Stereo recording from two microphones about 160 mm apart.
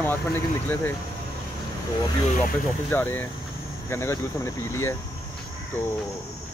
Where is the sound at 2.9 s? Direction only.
15° left (ahead or behind).